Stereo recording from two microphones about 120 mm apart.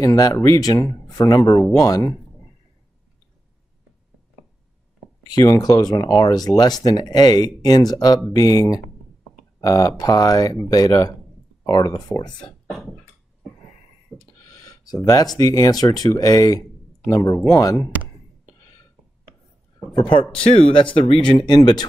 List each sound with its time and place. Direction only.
0.0 s speech: 30° left (ahead or behind)
5.2 s speech: 30° left (ahead or behind)
12.4 s speech: 5° left (ahead or behind)
14.1 s speech: 30° left (ahead or behind)
19.9 s a man's voice: 40° left (ahead or behind)